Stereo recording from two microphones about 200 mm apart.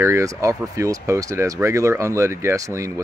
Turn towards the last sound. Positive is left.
turn(degrees=-15)  # may be behind; listen again after turning